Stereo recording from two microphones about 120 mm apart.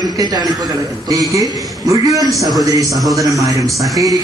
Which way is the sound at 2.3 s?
Centre (ahead or behind).